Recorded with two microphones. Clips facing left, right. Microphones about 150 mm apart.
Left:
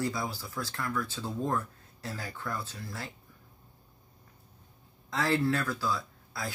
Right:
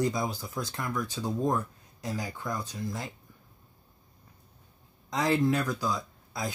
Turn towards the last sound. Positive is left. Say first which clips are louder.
# right 3 dB
turn(degrees=-20)  # may be behind; listen again after turning